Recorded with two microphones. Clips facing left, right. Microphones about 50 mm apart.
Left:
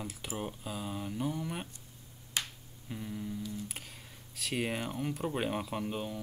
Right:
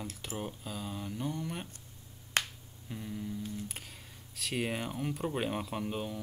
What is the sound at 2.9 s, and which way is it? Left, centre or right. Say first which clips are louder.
Humming: even; centre.